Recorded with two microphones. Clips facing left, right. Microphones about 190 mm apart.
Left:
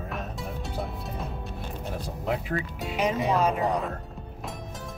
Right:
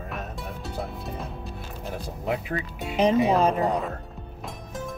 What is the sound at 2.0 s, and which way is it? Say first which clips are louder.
Speech: right 1 dB; centre (ahead or behind).